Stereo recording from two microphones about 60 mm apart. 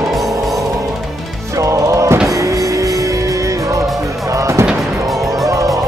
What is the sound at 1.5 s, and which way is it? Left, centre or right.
Music, right.